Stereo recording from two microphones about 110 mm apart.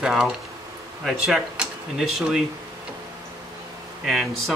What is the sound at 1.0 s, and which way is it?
Speech, centre (ahead or behind).